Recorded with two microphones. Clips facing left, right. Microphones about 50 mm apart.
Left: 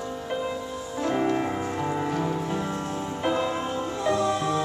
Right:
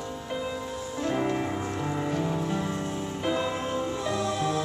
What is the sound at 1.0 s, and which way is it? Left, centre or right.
Music, centre.